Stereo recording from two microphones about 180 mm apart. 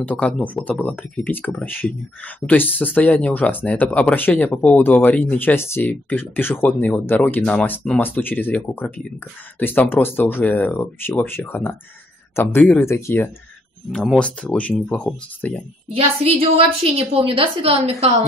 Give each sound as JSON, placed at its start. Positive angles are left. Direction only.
{"t": 0.0, "sound": "speech", "side_deg": 5}
{"t": 15.9, "sound": "a woman's voice", "side_deg": -30}